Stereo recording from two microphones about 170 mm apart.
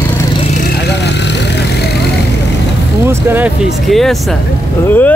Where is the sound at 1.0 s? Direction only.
90° left.